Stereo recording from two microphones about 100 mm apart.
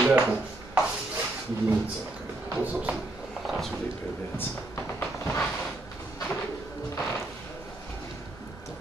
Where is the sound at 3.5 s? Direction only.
Centre (ahead or behind).